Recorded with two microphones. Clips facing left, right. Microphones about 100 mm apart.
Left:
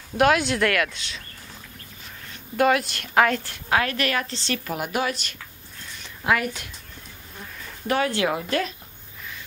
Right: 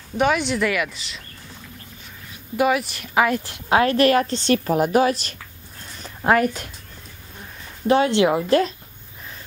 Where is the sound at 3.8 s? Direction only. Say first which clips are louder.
Right 9 dB; 35° right (ahead or behind).